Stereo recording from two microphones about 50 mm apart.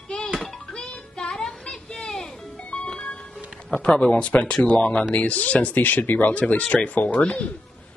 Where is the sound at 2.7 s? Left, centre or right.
Left.